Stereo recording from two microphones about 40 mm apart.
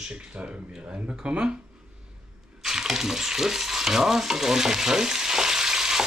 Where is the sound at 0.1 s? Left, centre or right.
Right.